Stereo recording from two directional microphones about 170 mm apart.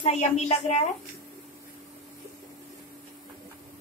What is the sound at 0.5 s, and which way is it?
Speech, 40° left (ahead or behind).